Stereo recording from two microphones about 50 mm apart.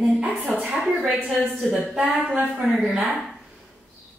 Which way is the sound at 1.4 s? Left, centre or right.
Centre.